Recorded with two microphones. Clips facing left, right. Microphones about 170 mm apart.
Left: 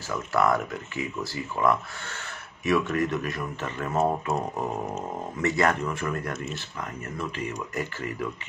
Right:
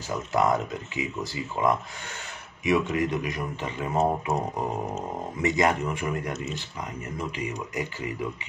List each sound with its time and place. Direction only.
0.1 s a man's voice: 15° right (ahead or behind)